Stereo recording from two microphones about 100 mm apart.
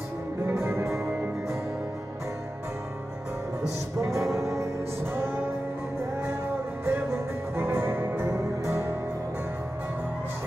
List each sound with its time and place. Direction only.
0.5 s music: 25° right (ahead or behind)
4.0 s music: 30° right (ahead or behind)
6.9 s music: 25° right (ahead or behind)